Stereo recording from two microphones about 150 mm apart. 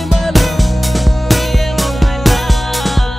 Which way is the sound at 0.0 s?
Centre (ahead or behind).